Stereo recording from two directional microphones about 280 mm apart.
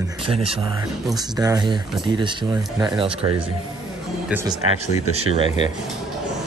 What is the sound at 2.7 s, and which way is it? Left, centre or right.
Speech, centre.